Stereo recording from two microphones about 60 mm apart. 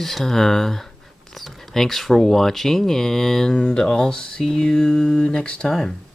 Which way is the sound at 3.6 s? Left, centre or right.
Centre.